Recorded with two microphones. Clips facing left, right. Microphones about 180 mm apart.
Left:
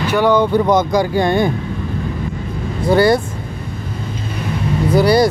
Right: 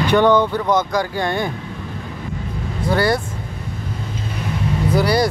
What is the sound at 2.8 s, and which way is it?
Speech, 20° left (ahead or behind).